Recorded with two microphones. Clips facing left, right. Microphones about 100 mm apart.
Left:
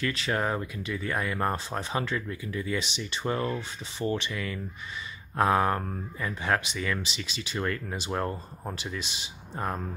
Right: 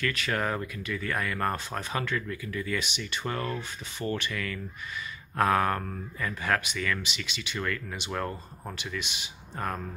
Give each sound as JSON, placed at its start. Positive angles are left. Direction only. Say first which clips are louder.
{"t": 0.0, "sound": "speech", "louder": "left 1 dB", "side_deg": 25}